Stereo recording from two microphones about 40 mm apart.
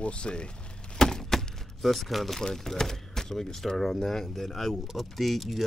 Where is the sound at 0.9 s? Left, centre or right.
Centre.